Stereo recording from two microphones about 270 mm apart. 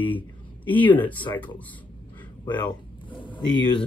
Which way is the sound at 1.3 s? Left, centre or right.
Centre.